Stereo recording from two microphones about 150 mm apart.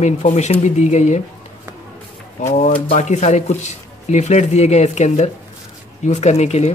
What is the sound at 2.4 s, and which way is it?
Speech, 55° left (ahead or behind).